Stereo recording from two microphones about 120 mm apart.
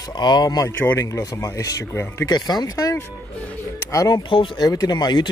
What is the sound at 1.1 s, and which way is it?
Speech, 30° left (ahead or behind).